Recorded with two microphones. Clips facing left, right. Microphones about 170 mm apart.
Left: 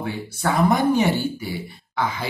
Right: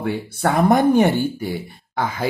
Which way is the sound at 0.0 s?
55° right (ahead or behind).